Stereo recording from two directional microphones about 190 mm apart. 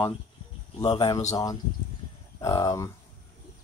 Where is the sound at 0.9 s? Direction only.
20° left (ahead or behind).